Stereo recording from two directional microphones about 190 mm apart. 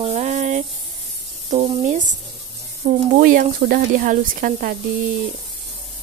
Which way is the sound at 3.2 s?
50° right (ahead or behind).